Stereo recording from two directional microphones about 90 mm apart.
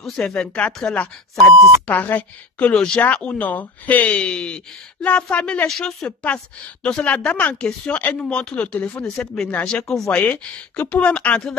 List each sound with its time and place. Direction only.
0.0 s a woman's voice: 10° left (ahead or behind)
1.9 s a woman's voice: 20° left (ahead or behind)
2.7 s a woman's voice: 10° left (ahead or behind)
5.7 s a woman's voice: 5° left (ahead or behind)
6.0 s a woman's voice: 15° left (ahead or behind)